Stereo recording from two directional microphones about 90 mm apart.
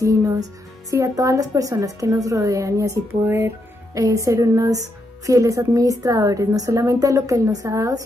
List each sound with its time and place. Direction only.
0.0 s speech: 35° right (ahead or behind)